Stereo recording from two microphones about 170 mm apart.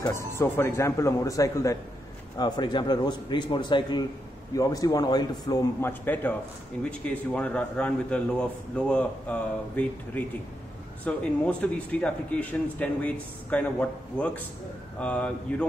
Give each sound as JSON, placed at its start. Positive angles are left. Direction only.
{"t": 0.0, "sound": "a man's voice", "side_deg": 20}
{"t": 5.8, "sound": "a man's voice", "side_deg": 10}